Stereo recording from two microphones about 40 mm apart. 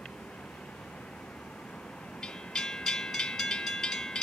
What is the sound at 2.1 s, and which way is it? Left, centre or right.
Train, centre.